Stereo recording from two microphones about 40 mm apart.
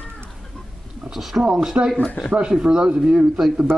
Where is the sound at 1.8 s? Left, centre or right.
Right.